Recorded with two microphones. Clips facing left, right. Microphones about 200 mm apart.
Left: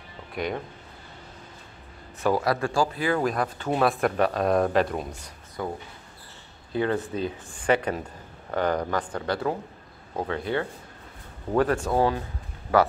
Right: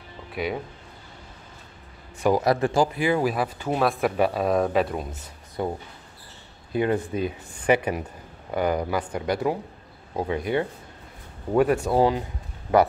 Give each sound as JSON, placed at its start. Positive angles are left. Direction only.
{"t": 0.3, "sound": "speech", "side_deg": -5}
{"t": 2.1, "sound": "speech", "side_deg": -15}
{"t": 5.6, "sound": "speech", "side_deg": -20}